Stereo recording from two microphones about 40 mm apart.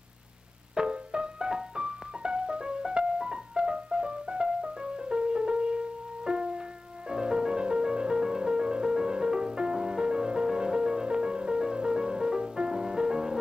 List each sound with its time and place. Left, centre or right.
0.7 s music: right